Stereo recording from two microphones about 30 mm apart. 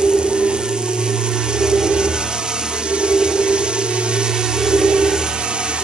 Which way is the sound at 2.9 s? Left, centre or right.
Right.